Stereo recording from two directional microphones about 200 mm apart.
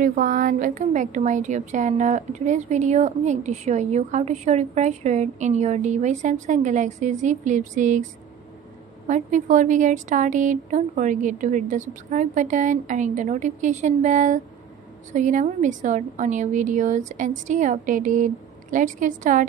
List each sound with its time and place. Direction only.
0.0 s a woman's voice: 45° right (ahead or behind)
9.0 s a woman's voice: 40° right (ahead or behind)